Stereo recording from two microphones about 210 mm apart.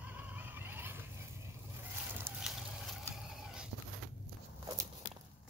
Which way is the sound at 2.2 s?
10° right (ahead or behind).